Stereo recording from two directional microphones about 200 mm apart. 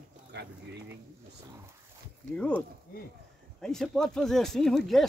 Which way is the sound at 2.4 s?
5° left (ahead or behind).